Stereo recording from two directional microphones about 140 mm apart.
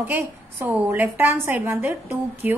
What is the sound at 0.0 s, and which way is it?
A woman's voice, 15° right (ahead or behind).